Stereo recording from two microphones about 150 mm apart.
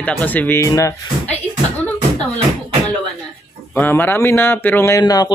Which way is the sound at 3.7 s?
15° left (ahead or behind).